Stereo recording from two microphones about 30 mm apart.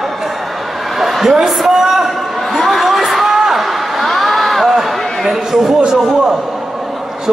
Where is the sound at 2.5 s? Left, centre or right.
Centre.